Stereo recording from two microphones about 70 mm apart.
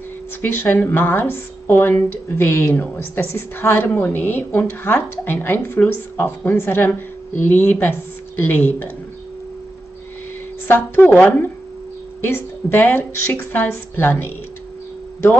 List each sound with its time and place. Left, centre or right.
0.4 s speech: left
11.1 s a woman's voice: left